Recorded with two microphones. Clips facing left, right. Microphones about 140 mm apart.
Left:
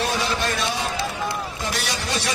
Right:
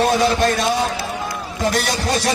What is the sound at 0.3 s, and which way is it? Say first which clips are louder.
A man's voice: right 7 dB; 40° right (ahead or behind).